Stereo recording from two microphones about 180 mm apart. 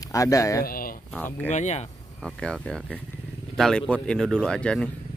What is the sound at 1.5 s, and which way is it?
Speech, 40° left (ahead or behind).